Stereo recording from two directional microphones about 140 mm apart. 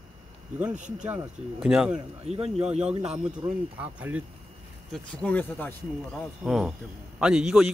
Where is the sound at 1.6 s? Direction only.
5° right (ahead or behind).